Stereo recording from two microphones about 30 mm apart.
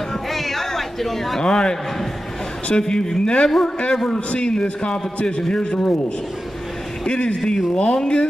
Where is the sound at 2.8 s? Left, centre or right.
Left.